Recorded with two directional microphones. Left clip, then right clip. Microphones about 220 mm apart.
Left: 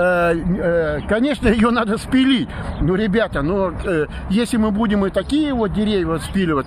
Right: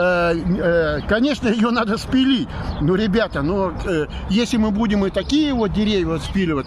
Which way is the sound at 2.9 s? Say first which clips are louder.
Left 1 dB; 5° left (ahead or behind).